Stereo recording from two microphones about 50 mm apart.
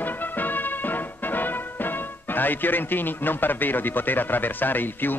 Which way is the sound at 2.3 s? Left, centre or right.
Left.